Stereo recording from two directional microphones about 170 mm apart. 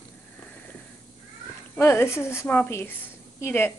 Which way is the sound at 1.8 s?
15° left (ahead or behind).